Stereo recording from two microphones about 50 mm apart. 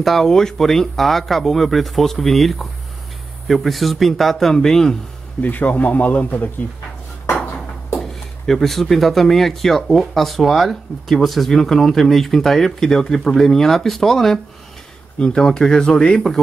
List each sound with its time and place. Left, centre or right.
0.0 s speech: centre
5.4 s speech: left
7.9 s speech: centre